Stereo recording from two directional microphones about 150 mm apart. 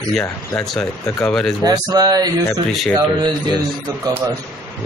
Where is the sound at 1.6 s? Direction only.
25° right (ahead or behind).